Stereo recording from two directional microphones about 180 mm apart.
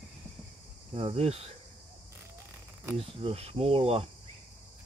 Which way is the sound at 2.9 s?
35° right (ahead or behind).